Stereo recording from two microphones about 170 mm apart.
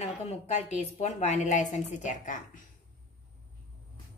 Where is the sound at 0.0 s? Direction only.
40° left (ahead or behind).